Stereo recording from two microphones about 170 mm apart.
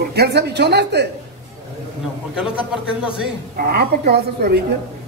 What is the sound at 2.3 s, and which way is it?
Speech, 5° right (ahead or behind).